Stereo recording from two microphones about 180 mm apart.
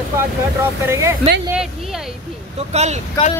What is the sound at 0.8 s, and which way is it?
Speech, 15° right (ahead or behind).